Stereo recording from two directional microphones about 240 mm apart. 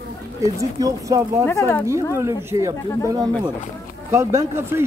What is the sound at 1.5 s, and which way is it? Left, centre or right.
Speech, centre.